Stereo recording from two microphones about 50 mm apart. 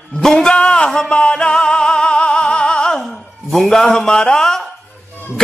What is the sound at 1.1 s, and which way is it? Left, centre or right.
Music, left.